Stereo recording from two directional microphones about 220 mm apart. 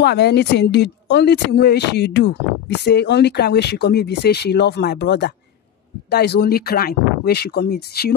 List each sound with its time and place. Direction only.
0.0 s speech: 50° left (ahead or behind)